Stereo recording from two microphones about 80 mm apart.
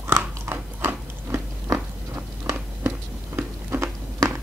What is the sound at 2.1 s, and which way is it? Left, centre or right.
Biting, right.